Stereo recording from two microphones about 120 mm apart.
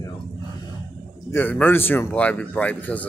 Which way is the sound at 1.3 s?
15° left (ahead or behind).